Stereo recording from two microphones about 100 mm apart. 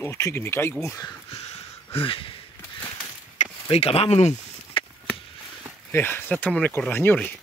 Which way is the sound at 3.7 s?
85° left.